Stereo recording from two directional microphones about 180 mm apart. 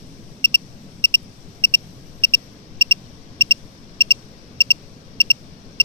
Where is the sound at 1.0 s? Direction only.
25° right (ahead or behind).